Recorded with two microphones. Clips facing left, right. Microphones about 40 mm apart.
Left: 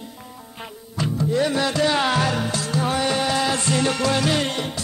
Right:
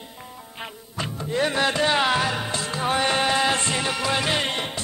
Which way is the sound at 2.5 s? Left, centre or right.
Right.